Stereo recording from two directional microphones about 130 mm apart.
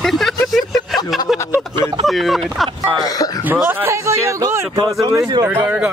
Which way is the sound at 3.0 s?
30° left (ahead or behind).